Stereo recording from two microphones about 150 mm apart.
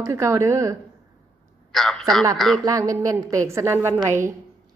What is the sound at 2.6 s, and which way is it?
A woman's voice, 20° right (ahead or behind).